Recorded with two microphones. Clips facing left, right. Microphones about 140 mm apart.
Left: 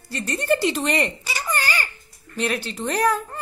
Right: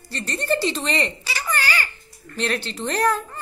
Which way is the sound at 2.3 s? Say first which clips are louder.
Even; 10° left (ahead or behind).